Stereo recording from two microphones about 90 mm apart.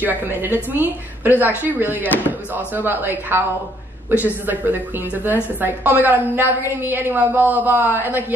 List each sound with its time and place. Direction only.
0.0 s a woman's voice: 20° right (ahead or behind)